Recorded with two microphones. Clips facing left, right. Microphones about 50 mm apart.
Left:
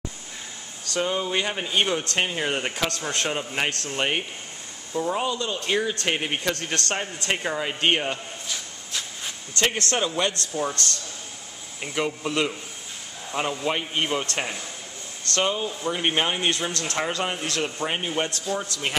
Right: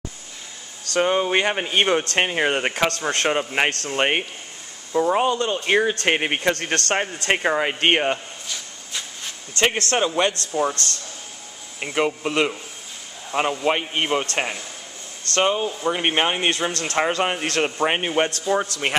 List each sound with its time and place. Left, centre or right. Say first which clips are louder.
1.0 s speech: right 6 dB; right
6.5 s a man's voice: right 5 dB; right
7.2 s speech: right 6 dB; right
8.5 s a sound: right 2 dB; centre
9.6 s speech: right 4 dB; right
11.8 s a man's voice: right 5 dB; right